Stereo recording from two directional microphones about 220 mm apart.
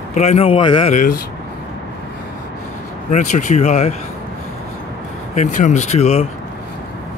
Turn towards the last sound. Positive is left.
turn(degrees=30)  # may be behind; listen again after turning